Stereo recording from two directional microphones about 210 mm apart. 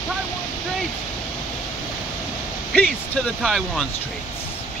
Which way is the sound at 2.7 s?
5° left (ahead or behind).